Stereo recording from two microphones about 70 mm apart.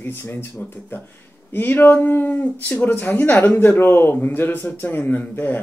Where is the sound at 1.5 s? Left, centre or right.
Left.